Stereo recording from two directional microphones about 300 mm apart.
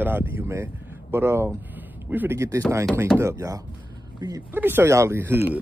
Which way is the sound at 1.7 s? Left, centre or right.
Centre.